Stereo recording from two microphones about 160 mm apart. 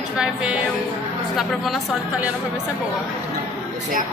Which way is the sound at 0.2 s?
5° right (ahead or behind).